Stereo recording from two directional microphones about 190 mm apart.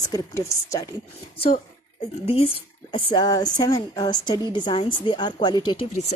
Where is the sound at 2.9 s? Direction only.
20° left (ahead or behind).